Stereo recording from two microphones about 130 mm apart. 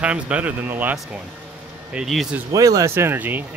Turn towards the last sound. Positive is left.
turn(degrees=-15)  # may be behind; listen again after turning